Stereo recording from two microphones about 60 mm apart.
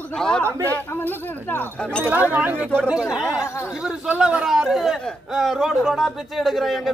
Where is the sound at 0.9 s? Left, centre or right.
Left.